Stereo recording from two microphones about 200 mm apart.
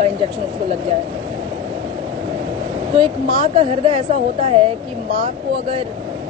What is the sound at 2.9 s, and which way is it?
Speech, 30° right (ahead or behind).